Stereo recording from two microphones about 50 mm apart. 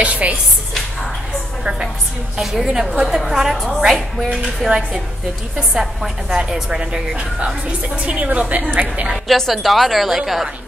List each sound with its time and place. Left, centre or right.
0.0 s speech: right
1.6 s music: centre
2.4 s a woman's voice: centre
4.3 s a woman's voice: centre
9.1 s a woman's voice: centre